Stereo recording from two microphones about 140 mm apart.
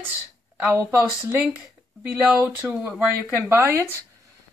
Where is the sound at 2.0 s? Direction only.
15° right (ahead or behind).